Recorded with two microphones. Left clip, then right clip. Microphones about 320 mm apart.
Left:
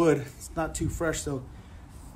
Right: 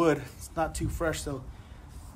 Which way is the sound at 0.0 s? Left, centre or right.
Centre.